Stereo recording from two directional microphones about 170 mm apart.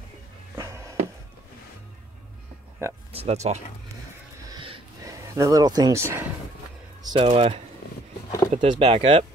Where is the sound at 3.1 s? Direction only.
40° right (ahead or behind).